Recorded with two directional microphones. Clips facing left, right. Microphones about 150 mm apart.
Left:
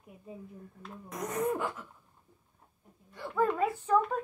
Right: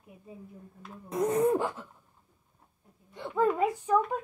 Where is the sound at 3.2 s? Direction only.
20° right (ahead or behind).